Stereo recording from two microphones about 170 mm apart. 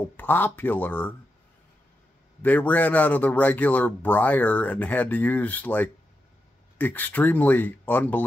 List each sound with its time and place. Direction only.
0.2 s speech: 10° left (ahead or behind)
2.4 s speech: 10° left (ahead or behind)